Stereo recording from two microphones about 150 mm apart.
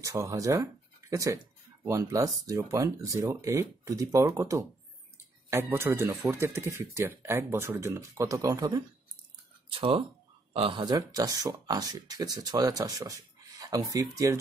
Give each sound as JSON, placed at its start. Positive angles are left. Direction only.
{"t": 0.0, "sound": "speech", "side_deg": -20}
{"t": 9.7, "sound": "speech", "side_deg": -35}